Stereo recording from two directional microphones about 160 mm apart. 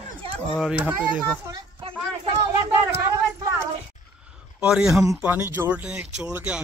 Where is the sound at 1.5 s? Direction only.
35° right (ahead or behind).